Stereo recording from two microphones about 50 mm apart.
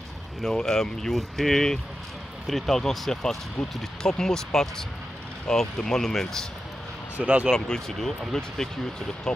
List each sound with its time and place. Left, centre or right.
0.4 s speech: centre
7.2 s speech: right
7.5 s speech: centre